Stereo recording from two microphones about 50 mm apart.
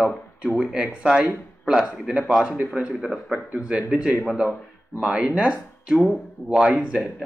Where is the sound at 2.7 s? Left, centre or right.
Centre.